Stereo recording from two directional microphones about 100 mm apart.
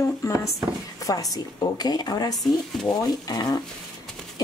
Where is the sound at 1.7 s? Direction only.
45° left (ahead or behind).